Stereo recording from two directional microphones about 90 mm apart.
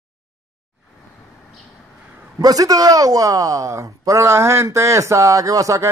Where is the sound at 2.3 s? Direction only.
40° right (ahead or behind).